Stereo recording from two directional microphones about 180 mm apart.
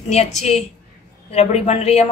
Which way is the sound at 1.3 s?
35° left (ahead or behind).